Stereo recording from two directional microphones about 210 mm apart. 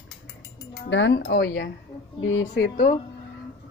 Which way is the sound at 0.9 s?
60° left (ahead or behind).